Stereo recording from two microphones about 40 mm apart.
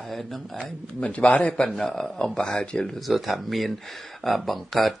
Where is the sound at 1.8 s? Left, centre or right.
Centre.